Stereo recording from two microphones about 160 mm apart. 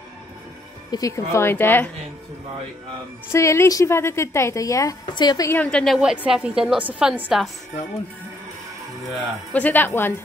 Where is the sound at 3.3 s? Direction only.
15° left (ahead or behind).